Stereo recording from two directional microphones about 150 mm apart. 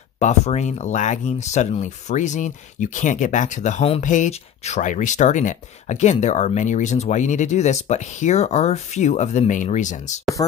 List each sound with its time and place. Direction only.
0.2 s speech: 50° left (ahead or behind)